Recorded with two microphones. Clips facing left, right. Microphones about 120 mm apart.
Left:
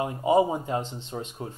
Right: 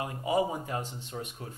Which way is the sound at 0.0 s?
25° left (ahead or behind).